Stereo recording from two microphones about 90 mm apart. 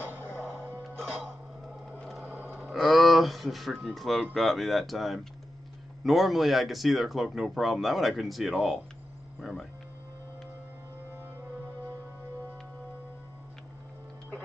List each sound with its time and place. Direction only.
0.3 s music: 10° left (ahead or behind)
0.6 s music: 20° right (ahead or behind)
1.9 s sewing machine: 5° left (ahead or behind)
2.2 s a sound: 15° right (ahead or behind)
2.7 s a sound: centre (ahead or behind)
3.9 s speech: centre (ahead or behind)